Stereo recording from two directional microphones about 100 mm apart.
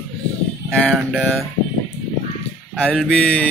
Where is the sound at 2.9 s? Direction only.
10° left (ahead or behind).